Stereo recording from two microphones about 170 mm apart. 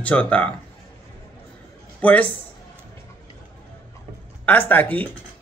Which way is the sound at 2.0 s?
10° left (ahead or behind).